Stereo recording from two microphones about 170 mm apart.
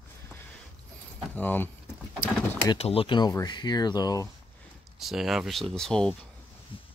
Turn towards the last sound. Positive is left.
turn(degrees=30)  # may be behind; listen again after turning